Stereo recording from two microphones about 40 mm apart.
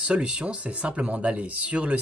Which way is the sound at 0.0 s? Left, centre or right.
Right.